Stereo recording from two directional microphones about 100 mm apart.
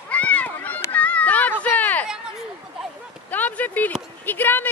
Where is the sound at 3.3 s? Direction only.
15° left (ahead or behind).